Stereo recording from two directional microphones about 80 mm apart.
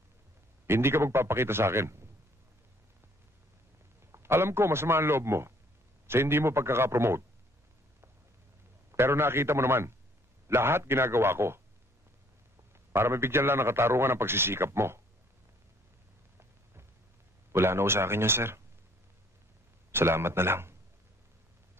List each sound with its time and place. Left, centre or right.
0.7 s a man's voice: right
4.1 s a man's voice: right
8.9 s a man's voice: right
12.9 s a man's voice: right
17.5 s a man's voice: right
19.9 s a man's voice: right